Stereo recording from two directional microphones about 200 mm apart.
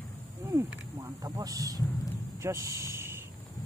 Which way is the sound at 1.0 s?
15° right (ahead or behind).